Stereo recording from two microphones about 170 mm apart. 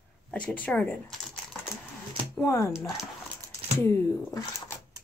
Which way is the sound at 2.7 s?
Centre (ahead or behind).